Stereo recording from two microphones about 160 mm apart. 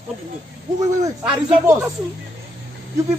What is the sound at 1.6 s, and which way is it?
Speech, 20° right (ahead or behind).